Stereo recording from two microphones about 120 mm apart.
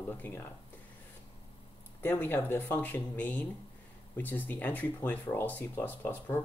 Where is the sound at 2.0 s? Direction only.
20° left (ahead or behind).